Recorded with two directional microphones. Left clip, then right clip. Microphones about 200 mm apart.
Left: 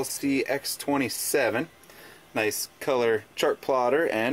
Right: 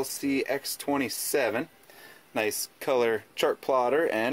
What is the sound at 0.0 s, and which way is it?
Speech, 10° right (ahead or behind).